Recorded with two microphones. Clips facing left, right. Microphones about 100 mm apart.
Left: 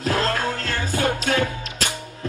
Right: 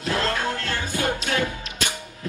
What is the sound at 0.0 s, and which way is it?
Music, 35° left (ahead or behind).